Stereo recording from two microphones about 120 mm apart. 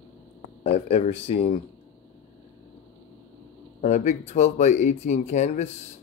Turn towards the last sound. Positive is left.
turn(degrees=70)  # may be behind; listen again after turning